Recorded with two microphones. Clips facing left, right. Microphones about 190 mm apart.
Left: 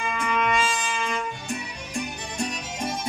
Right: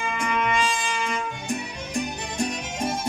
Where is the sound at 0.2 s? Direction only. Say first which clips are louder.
Even; 15° right (ahead or behind).